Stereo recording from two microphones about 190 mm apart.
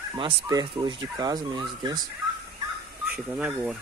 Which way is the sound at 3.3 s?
5° right (ahead or behind).